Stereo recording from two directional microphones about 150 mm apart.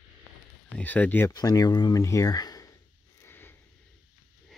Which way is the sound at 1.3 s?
25° left (ahead or behind).